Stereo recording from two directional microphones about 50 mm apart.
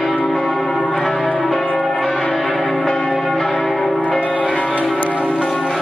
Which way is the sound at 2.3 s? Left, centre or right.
Centre.